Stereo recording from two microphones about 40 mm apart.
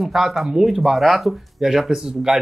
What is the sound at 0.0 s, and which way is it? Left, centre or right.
Speech, centre.